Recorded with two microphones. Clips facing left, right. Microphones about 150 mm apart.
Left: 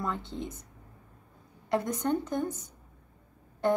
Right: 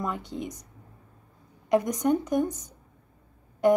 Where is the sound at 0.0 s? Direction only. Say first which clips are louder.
Right 2 dB; 15° right (ahead or behind).